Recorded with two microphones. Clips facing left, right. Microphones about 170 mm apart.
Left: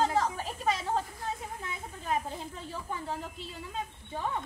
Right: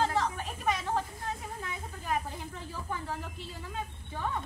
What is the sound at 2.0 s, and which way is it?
Speech, 25° left (ahead or behind).